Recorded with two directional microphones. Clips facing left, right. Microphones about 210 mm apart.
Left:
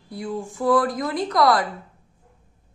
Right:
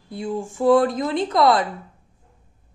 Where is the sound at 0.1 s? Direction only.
25° right (ahead or behind).